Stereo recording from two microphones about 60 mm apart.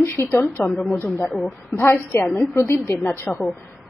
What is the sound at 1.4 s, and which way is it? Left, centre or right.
A woman's voice, left.